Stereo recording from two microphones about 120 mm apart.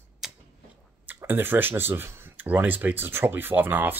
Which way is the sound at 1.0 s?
15° right (ahead or behind).